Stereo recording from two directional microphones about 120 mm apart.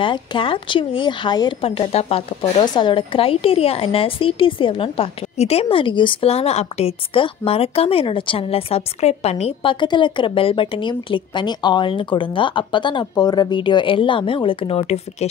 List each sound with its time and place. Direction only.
0.0 s a woman's voice: 40° left (ahead or behind)
1.6 s speech: 55° left (ahead or behind)
2.6 s a woman's voice: 40° left (ahead or behind); by 15.2 s 60° left (ahead or behind)